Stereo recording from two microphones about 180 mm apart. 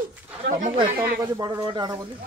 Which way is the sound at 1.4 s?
20° right (ahead or behind).